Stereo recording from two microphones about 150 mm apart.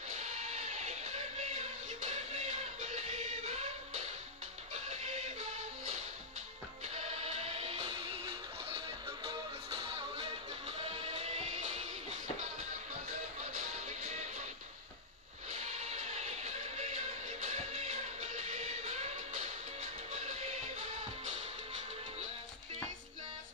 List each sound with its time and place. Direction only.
0.2 s music: 45° right (ahead or behind)
7.2 s music: 40° right (ahead or behind)
13.6 s music: 50° right (ahead or behind)
15.5 s music: 45° right (ahead or behind)